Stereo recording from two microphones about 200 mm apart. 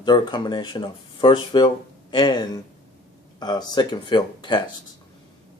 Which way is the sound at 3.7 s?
20° left (ahead or behind).